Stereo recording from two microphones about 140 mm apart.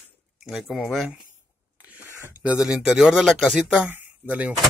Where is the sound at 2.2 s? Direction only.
10° right (ahead or behind).